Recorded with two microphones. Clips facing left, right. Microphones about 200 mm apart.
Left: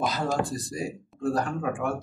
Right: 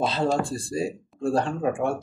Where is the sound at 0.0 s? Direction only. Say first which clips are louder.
Right 3 dB; 30° right (ahead or behind).